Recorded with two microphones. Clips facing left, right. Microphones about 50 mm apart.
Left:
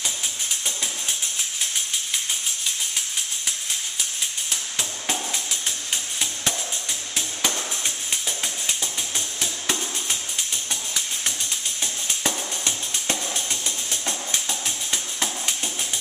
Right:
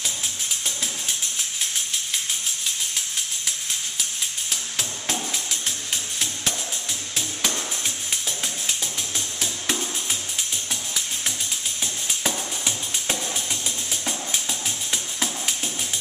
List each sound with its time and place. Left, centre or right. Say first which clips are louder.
4.5 s music: even; centre
11.8 s music: even; centre